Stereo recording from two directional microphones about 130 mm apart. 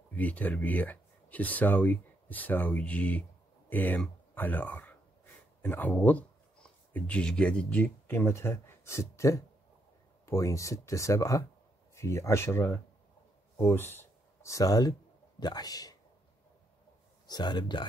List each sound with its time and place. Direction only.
0.1 s speech: 10° left (ahead or behind); by 16.0 s 30° left (ahead or behind)
17.3 s speech: 35° left (ahead or behind)